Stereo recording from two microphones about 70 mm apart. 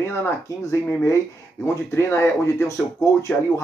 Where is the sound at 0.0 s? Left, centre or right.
Left.